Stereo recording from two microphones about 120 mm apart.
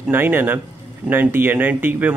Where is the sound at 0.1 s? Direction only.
20° right (ahead or behind).